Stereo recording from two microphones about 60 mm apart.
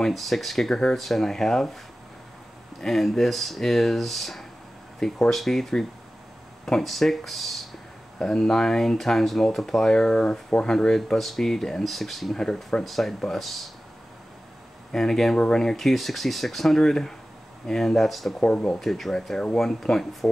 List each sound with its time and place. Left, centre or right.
0.0 s speech: centre
2.8 s speech: centre
14.9 s speech: centre
18.4 s speech: centre
18.8 s speech: centre